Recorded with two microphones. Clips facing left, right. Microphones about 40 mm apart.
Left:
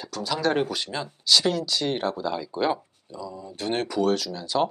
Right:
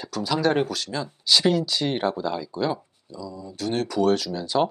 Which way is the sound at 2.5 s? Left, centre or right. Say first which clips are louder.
Left 1 dB; left.